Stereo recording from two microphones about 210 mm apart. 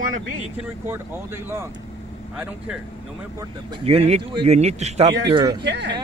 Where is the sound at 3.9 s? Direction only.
30° right (ahead or behind).